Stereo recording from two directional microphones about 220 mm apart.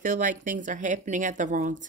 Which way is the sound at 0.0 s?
35° right (ahead or behind).